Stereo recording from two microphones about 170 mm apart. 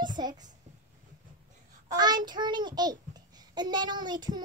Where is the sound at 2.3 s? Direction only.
25° right (ahead or behind).